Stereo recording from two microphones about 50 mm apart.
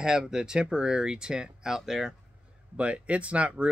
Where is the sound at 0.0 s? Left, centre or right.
Centre.